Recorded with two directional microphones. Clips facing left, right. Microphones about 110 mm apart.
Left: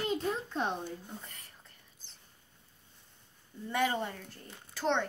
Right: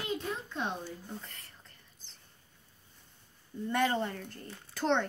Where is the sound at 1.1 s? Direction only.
10° left (ahead or behind).